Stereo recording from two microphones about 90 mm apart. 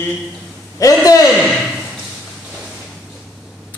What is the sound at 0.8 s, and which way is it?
Speech, 40° left (ahead or behind).